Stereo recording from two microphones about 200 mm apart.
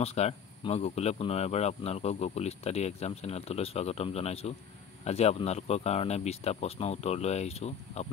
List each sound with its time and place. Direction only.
0.0 s speech: 30° left (ahead or behind)